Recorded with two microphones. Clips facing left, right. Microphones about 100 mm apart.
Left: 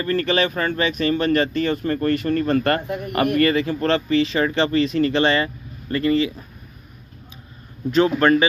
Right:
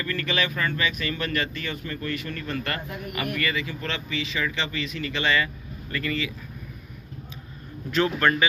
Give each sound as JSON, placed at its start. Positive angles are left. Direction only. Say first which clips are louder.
{"t": 0.0, "sound": "speech", "louder": "left 8 dB", "side_deg": 35}
{"t": 7.9, "sound": "speech", "louder": "left 7 dB", "side_deg": 25}